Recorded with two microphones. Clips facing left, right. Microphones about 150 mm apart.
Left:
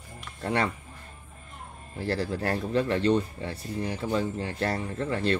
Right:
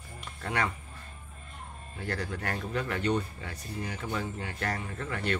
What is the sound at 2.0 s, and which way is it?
Speech, 30° left (ahead or behind).